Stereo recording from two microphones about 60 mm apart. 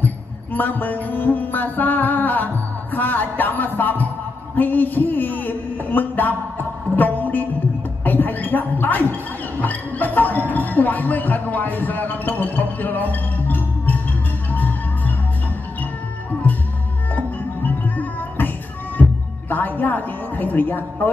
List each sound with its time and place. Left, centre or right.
0.0 s music: left
4.6 s a man's voice: left
7.0 s music: left
8.0 s a sound: left
9.6 s speech: left
14.5 s music: left
17.1 s music: left
19.5 s a sound: left